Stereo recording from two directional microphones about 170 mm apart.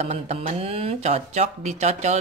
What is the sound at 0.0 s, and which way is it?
Speech, 40° right (ahead or behind).